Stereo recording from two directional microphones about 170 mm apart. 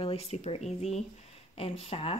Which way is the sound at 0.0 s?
35° left (ahead or behind).